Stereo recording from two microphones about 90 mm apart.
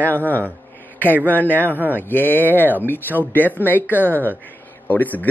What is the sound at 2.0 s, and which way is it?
Speech, 20° left (ahead or behind).